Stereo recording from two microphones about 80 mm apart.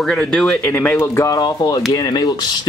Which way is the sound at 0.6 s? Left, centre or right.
Left.